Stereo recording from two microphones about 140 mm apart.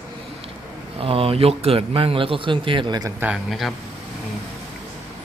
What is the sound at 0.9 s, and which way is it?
A man's voice, 45° right (ahead or behind).